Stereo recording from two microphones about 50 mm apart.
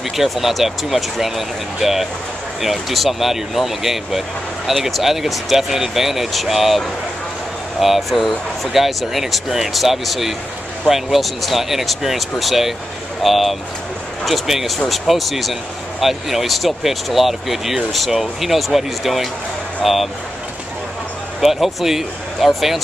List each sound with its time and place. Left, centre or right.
0.1 s speech: centre
7.8 s speech: centre
21.4 s speech: centre